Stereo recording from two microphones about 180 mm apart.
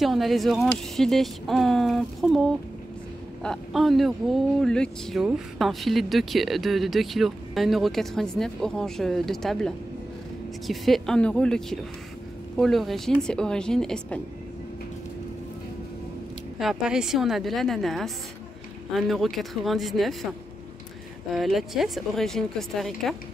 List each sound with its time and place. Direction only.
0.0 s speech: centre (ahead or behind)
16.5 s speech: 5° right (ahead or behind)
21.3 s speech: centre (ahead or behind)